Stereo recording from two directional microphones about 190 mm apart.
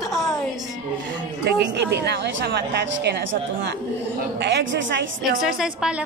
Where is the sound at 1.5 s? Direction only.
60° right (ahead or behind).